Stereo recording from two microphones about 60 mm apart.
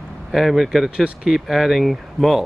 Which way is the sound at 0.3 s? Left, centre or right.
Centre.